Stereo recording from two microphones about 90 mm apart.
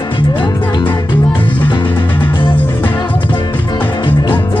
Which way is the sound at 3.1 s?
65° left (ahead or behind).